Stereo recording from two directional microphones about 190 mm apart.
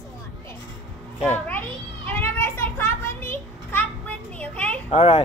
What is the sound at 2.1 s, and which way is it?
Children playing, 10° left (ahead or behind).